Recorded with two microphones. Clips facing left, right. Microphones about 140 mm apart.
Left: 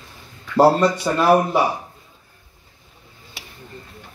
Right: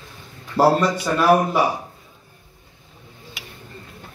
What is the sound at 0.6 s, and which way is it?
Speech, 30° left (ahead or behind).